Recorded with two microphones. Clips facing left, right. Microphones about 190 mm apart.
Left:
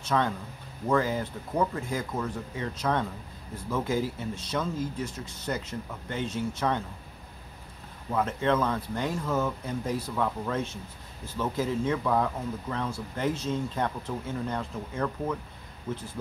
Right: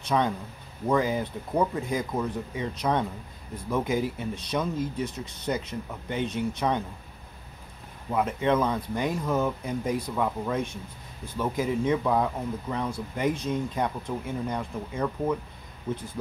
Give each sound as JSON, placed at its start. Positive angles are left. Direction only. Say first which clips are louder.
{"t": 0.0, "sound": "a man's voice", "louder": "right 2 dB", "side_deg": -15}
{"t": 8.1, "sound": "speech", "louder": "right 2 dB", "side_deg": -15}